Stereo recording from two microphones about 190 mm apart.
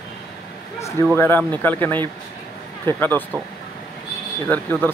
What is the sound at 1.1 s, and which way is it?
Speech, 10° left (ahead or behind).